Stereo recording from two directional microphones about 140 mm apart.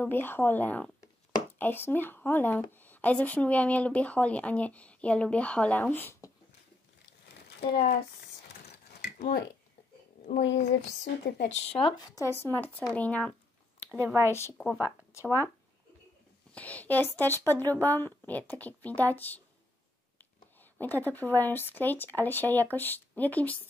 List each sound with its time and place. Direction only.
0.0 s speech: 15° left (ahead or behind)
7.6 s speech: 50° left (ahead or behind)
10.2 s speech: 65° left (ahead or behind)
11.4 s speech: 50° left (ahead or behind)
12.0 s speech: 20° left (ahead or behind)
13.9 s speech: 20° right (ahead or behind)
14.3 s speech: 20° left (ahead or behind)
15.2 s speech: 20° right (ahead or behind)
16.5 s speech: 10° left (ahead or behind)
20.7 s speech: 15° left (ahead or behind)